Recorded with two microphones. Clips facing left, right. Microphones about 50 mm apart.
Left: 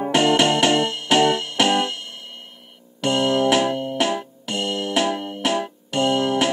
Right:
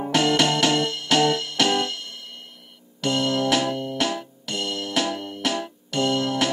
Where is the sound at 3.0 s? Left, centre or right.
Centre.